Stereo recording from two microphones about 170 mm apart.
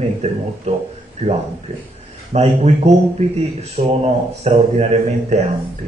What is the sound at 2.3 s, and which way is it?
Speech, 40° right (ahead or behind).